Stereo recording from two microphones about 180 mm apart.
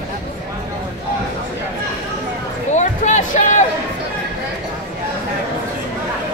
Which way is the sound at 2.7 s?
40° left (ahead or behind).